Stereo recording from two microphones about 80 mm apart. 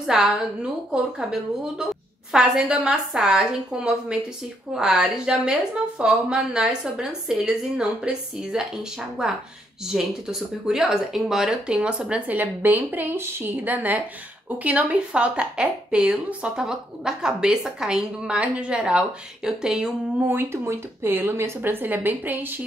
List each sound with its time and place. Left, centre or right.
0.0 s a woman's voice: centre
20.2 s speech: right